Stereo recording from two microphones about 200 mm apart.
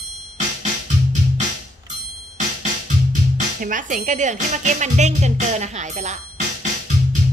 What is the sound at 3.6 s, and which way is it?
Speech, 40° right (ahead or behind).